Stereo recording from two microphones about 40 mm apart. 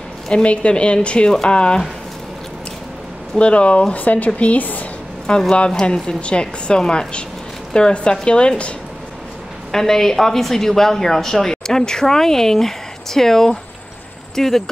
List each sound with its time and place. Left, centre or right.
0.3 s a woman's voice: left
3.3 s a woman's voice: left
5.3 s a woman's voice: left
9.7 s speech: centre